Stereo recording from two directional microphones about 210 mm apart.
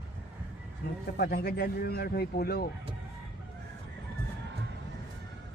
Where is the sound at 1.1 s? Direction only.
45° left (ahead or behind).